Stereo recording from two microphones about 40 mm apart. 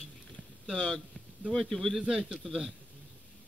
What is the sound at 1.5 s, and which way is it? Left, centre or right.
Speech, centre.